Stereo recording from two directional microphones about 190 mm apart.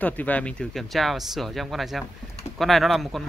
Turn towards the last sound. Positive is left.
turn(degrees=0)  # may be behind; listen again after turning